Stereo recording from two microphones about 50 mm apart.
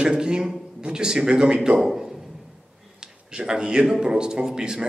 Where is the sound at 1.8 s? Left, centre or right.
Centre.